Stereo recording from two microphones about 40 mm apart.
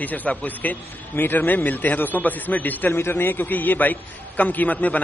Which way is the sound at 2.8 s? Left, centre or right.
Left.